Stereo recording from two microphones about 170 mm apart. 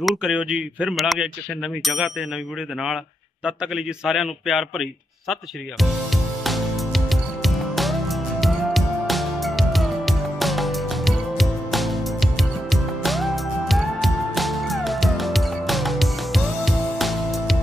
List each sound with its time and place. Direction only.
0.0 s a man's voice: 5° right (ahead or behind)
3.4 s a man's voice: 5° right (ahead or behind)
6.4 s music: centre (ahead or behind)